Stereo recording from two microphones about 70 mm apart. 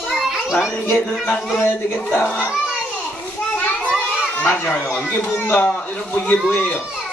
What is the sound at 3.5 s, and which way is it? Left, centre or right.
Children playing, centre.